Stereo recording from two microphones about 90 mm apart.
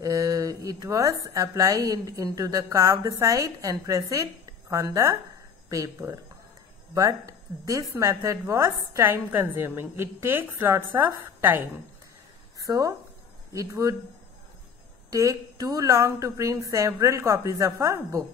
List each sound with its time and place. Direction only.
0.0 s a sound: 40° right (ahead or behind)
0.8 s a woman's voice: 35° right (ahead or behind); by 11.8 s 20° right (ahead or behind)
12.5 s a woman's voice: 40° right (ahead or behind)
15.0 s a woman's voice: 40° right (ahead or behind)